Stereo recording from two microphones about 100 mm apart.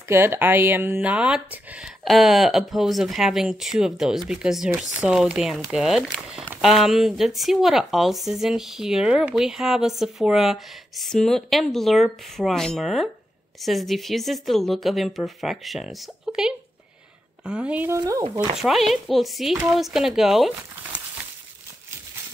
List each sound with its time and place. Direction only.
0.1 s speech: 25° right (ahead or behind)
1.1 s speech: 10° right (ahead or behind)
2.0 s speech: centre (ahead or behind)
18.6 s speech: centre (ahead or behind)